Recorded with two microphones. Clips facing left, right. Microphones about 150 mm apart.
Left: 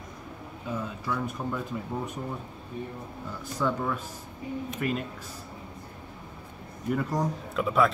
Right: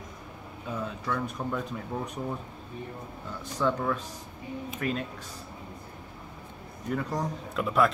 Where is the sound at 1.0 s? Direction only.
5° left (ahead or behind).